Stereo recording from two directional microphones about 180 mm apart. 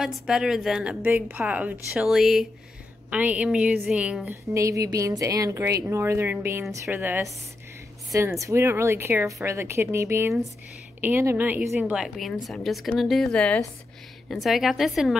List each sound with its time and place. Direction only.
0.0 s a woman's voice: 5° right (ahead or behind)
4.6 s a woman's voice: 15° right (ahead or behind); by 15.1 s centre (ahead or behind)